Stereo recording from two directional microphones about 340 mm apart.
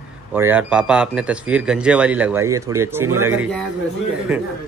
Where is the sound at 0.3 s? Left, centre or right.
Centre.